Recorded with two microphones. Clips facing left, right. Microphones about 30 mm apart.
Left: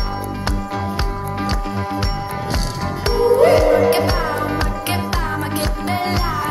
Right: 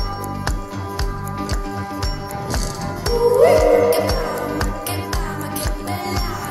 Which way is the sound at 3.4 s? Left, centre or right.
Left.